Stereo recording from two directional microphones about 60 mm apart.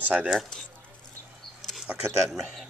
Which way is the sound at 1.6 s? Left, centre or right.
Centre.